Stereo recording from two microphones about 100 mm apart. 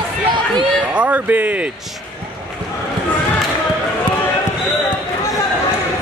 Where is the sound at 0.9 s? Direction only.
15° right (ahead or behind).